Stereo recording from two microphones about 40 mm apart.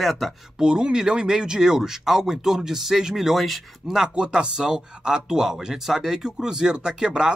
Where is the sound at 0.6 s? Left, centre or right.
Centre.